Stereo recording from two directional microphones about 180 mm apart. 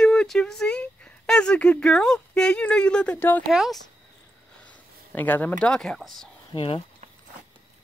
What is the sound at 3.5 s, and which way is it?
Speech, centre (ahead or behind).